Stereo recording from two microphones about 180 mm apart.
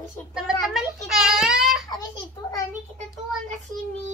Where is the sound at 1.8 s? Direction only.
20° left (ahead or behind).